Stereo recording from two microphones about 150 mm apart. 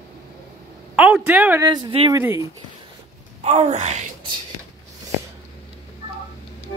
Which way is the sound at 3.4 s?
50° right (ahead or behind).